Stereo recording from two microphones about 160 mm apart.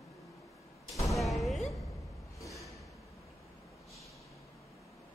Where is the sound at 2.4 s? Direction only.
20° left (ahead or behind).